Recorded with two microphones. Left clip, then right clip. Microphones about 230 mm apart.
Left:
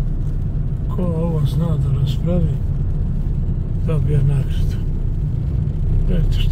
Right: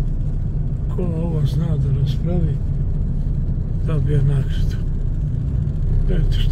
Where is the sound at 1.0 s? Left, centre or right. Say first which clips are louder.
Left 3 dB; centre.